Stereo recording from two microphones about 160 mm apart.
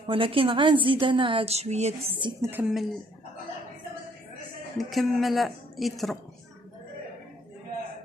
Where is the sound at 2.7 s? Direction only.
Centre (ahead or behind).